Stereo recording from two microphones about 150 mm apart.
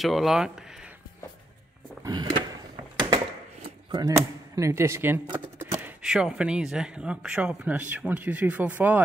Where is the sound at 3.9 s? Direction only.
25° right (ahead or behind).